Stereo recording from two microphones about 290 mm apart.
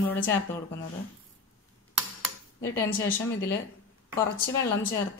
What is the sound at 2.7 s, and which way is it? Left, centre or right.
Speech, centre.